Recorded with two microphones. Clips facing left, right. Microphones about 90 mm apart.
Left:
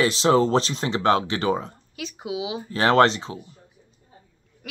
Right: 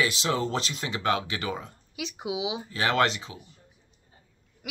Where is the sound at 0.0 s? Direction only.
35° left (ahead or behind).